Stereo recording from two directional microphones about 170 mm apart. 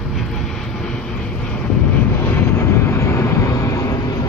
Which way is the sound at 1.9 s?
10° left (ahead or behind).